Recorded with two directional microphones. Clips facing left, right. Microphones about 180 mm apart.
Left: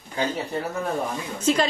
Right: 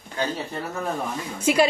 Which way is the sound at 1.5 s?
10° right (ahead or behind).